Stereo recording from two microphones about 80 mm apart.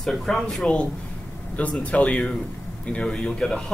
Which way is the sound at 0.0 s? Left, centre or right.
Centre.